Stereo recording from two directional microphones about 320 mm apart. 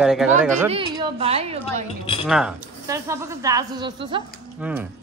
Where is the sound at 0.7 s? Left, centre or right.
Centre.